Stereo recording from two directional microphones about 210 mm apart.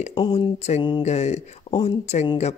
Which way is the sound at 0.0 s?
25° left (ahead or behind).